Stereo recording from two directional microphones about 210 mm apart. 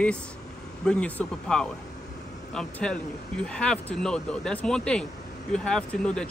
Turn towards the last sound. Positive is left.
turn(degrees=5)  # may be behind; listen again after turning